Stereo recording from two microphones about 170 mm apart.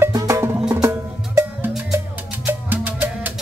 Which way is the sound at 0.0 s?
15° right (ahead or behind).